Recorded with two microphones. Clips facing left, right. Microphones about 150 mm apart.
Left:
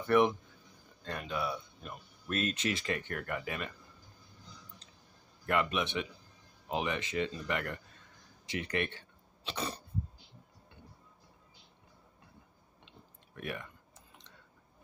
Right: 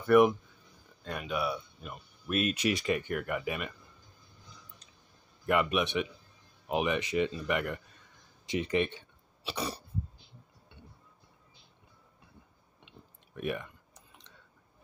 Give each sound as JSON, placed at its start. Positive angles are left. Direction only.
{"t": 1.0, "sound": "speech", "side_deg": -10}
{"t": 5.5, "sound": "speech", "side_deg": -15}
{"t": 9.4, "sound": "cough", "side_deg": -10}
{"t": 13.3, "sound": "speech", "side_deg": -20}